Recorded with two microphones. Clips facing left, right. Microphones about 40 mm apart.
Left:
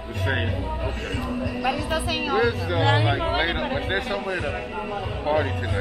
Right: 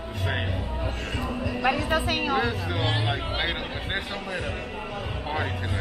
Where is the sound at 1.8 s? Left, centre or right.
Right.